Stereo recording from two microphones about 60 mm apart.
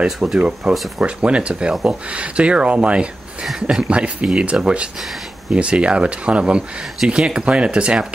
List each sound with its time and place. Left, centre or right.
0.0 s speech: centre